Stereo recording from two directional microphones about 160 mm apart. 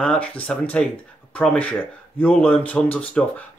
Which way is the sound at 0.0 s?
5° left (ahead or behind).